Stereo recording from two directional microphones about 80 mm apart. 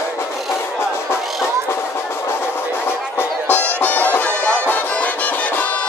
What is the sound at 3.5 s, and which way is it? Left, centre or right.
Music, left.